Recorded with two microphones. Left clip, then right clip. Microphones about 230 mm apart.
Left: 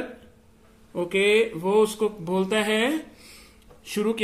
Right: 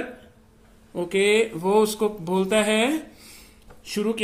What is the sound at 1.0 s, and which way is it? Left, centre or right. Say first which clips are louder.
Speech: even; centre.